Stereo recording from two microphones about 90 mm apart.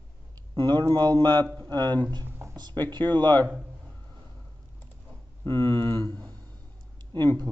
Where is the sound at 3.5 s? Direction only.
15° right (ahead or behind).